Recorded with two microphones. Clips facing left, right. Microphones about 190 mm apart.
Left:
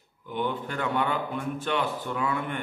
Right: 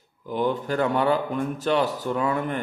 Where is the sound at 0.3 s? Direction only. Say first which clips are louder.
Right 6 dB; 40° right (ahead or behind).